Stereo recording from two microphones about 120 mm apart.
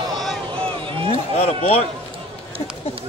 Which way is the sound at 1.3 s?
55° left (ahead or behind).